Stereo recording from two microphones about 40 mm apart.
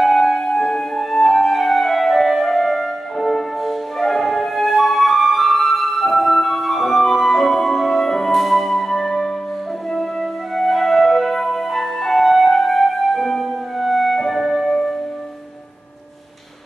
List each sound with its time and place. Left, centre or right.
0.0 s music: centre
10.5 s music: centre